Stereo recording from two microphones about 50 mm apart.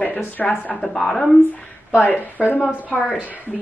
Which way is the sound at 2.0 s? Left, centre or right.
Left.